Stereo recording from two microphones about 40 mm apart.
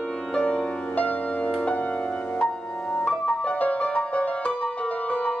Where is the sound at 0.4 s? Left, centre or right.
Left.